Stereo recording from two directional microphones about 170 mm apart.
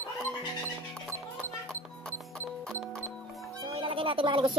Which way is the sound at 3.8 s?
30° right (ahead or behind).